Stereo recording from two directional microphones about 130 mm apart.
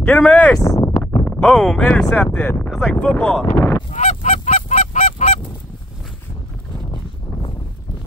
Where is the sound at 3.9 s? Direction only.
65° left (ahead or behind).